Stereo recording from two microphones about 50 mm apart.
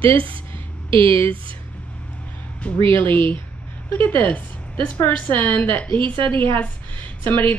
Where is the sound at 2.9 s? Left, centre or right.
Left.